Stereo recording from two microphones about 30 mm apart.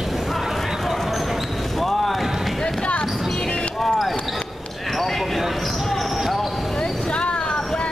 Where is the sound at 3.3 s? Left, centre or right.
Left.